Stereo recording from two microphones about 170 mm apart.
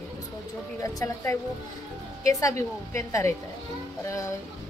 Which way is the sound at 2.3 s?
20° left (ahead or behind).